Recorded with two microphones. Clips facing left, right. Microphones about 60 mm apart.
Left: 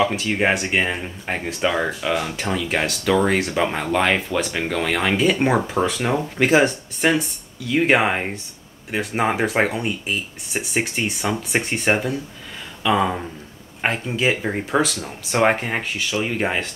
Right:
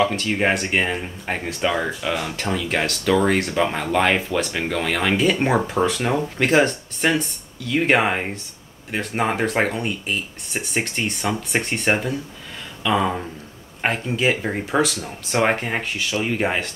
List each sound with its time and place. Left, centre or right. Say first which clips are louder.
0.0 s speech: even; centre